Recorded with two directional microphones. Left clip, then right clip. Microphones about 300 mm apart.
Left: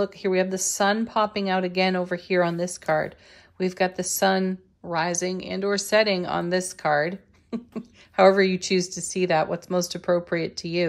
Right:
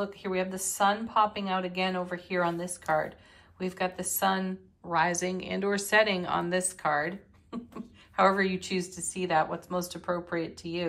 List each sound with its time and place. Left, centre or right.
0.0 s a woman's voice: centre